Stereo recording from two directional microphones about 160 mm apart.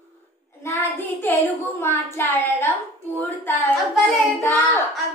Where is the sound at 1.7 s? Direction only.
15° left (ahead or behind).